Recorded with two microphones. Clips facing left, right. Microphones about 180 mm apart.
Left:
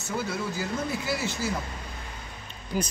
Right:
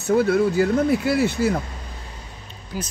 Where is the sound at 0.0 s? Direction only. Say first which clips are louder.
Right 13 dB; 60° right (ahead or behind).